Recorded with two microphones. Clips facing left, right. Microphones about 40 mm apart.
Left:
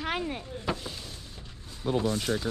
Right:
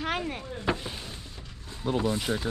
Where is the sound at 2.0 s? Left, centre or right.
Centre.